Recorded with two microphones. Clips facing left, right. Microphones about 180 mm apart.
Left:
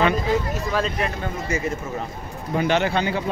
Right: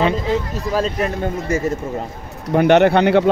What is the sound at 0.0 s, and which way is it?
Speech, 30° right (ahead or behind).